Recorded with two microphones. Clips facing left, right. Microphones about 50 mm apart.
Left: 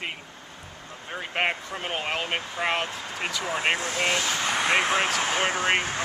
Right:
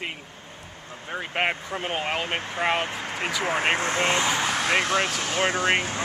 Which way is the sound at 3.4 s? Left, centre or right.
Right.